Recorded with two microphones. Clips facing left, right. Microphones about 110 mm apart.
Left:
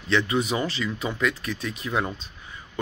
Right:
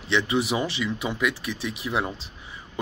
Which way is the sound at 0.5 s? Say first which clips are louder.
Right 1 dB; 10° right (ahead or behind).